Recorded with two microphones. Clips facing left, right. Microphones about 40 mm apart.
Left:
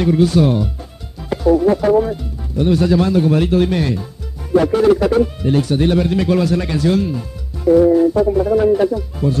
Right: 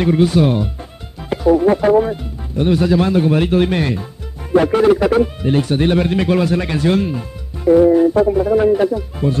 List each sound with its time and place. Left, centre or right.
0.0 s speech: right
8.4 s speech: right